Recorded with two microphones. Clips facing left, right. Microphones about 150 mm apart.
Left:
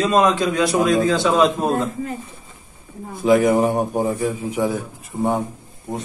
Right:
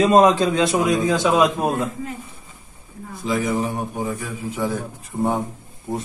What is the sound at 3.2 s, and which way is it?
Speech, 55° left (ahead or behind).